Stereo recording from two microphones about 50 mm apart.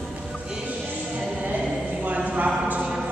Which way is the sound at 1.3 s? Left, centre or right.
Right.